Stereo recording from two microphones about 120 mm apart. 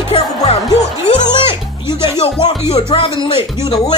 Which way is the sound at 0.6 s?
40° left (ahead or behind).